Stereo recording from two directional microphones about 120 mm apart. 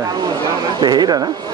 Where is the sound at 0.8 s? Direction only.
35° right (ahead or behind).